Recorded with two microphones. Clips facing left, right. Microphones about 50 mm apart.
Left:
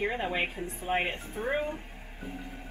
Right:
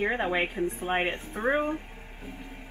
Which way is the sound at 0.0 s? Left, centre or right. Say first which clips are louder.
Right 3 dB; right.